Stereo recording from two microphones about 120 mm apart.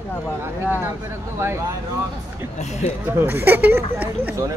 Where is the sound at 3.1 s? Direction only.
20° right (ahead or behind).